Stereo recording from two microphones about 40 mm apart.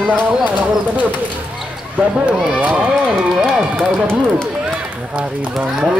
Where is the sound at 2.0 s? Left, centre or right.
Right.